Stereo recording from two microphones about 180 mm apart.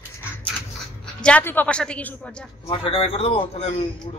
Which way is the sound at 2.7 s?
30° left (ahead or behind).